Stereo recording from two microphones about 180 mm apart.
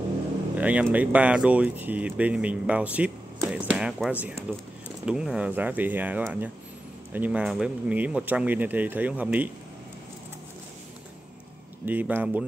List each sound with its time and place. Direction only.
0.6 s speech: 10° right (ahead or behind)
11.8 s speech: 10° right (ahead or behind)